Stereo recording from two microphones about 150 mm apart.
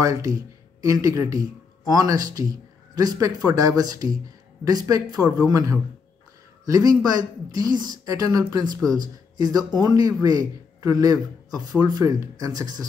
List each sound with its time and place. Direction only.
0.0 s speech: 20° right (ahead or behind)